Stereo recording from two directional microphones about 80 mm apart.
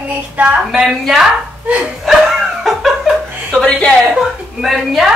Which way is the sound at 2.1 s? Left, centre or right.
Centre.